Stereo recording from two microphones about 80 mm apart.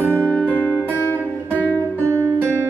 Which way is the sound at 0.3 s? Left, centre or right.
Centre.